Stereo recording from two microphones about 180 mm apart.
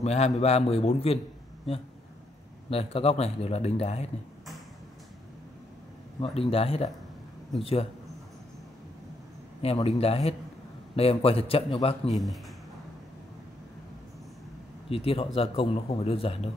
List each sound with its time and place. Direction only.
0.0 s a man's voice: 35° left (ahead or behind)
2.7 s a man's voice: 35° left (ahead or behind)
6.2 s a man's voice: 35° left (ahead or behind)
9.6 s a man's voice: 35° left (ahead or behind)
14.9 s a man's voice: 30° left (ahead or behind)